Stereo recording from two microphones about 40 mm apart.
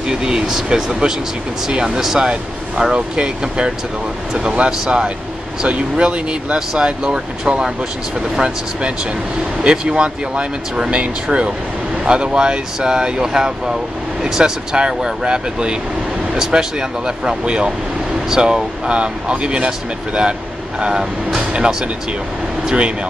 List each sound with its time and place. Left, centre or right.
0.1 s speech: centre
2.8 s speech: right
9.6 s speech: right
20.8 s speech: centre